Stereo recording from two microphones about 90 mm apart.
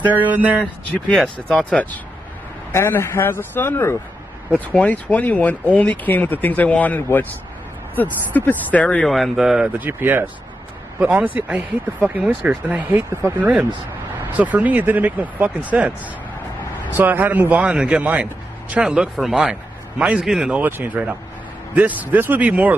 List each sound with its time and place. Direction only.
0.0 s speech: 20° right (ahead or behind)
1.1 s speech: 5° left (ahead or behind)
2.7 s speech: 30° left (ahead or behind)
9.0 s speech: centre (ahead or behind)
9.8 s a man's voice: 25° right (ahead or behind)
16.9 s a man's voice: 20° right (ahead or behind)
20.5 s speech: 20° right (ahead or behind)